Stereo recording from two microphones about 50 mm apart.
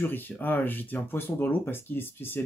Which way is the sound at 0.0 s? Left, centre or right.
Left.